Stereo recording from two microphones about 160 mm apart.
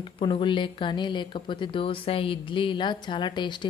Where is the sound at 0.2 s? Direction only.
30° left (ahead or behind).